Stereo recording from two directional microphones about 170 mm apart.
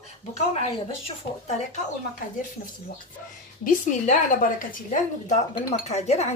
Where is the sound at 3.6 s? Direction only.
50° left (ahead or behind).